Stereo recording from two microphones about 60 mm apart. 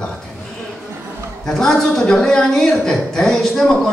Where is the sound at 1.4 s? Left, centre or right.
Centre.